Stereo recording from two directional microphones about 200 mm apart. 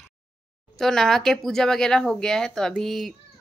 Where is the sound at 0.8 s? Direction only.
Centre (ahead or behind).